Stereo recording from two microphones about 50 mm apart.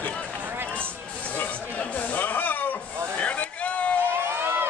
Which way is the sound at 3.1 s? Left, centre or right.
Left.